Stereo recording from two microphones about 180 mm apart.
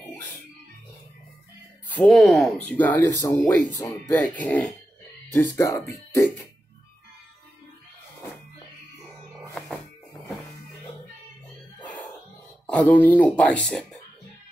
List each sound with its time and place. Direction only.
0.0 s music: 10° left (ahead or behind)
1.9 s speech: centre (ahead or behind)
5.3 s speech: 15° left (ahead or behind)
11.8 s a sound: 10° left (ahead or behind)
12.6 s speech: 5° left (ahead or behind)